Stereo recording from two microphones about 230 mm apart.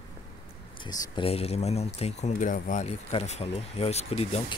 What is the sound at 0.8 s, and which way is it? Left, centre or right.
Speech, left.